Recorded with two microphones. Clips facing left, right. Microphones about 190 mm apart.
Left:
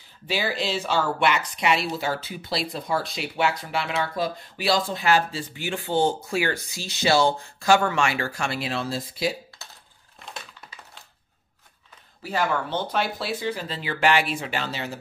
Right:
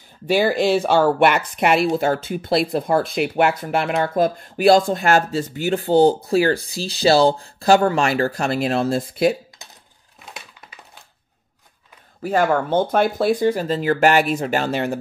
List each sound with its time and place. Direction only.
0.3 s speech: 50° right (ahead or behind)
9.6 s coin: 15° right (ahead or behind)
12.2 s speech: 50° right (ahead or behind)